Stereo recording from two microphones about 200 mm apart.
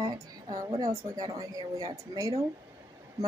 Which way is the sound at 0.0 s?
20° right (ahead or behind).